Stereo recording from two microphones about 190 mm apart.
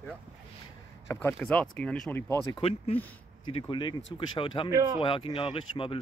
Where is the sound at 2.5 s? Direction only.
30° left (ahead or behind).